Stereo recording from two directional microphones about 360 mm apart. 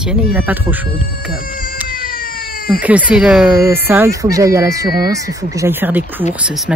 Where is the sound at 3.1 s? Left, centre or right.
Centre.